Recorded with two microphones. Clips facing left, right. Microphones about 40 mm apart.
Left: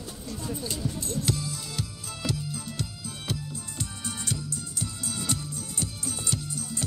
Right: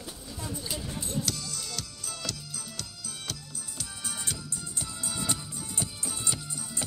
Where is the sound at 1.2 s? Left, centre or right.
Left.